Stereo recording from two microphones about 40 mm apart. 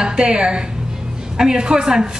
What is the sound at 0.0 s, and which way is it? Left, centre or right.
A woman's voice, right.